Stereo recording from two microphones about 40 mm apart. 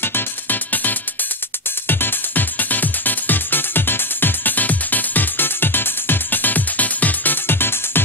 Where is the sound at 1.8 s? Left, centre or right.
Left.